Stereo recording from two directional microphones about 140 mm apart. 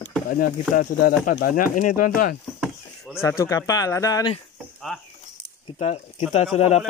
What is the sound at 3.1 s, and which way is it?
Speech, 20° left (ahead or behind).